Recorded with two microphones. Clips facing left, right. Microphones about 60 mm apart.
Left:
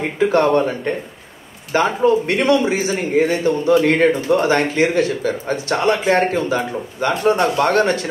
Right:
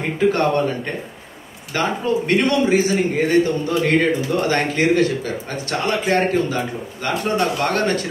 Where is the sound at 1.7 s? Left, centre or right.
Left.